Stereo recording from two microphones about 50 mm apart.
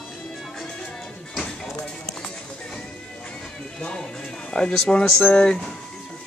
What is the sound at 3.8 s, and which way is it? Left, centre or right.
Music, centre.